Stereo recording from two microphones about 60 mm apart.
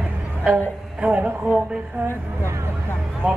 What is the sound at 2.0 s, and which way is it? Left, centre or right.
Speech, right.